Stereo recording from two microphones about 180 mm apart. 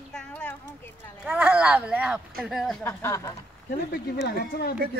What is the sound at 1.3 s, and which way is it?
Speech, 10° right (ahead or behind).